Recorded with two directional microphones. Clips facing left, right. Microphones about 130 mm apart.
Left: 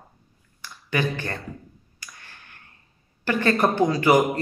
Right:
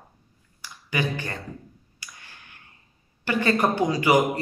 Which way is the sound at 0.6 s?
15° right (ahead or behind).